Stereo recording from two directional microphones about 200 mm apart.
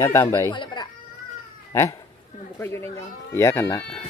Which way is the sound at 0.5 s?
25° left (ahead or behind).